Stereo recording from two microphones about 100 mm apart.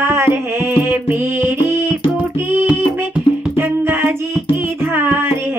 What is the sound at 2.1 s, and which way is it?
Music, 10° right (ahead or behind).